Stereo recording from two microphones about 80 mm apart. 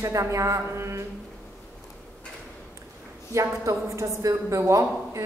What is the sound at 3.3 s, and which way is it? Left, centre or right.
A man's voice, right.